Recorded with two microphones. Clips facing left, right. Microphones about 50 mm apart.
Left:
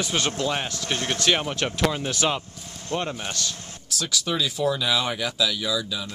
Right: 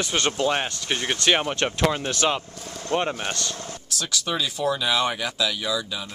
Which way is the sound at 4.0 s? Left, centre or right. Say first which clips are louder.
Left 1 dB; centre.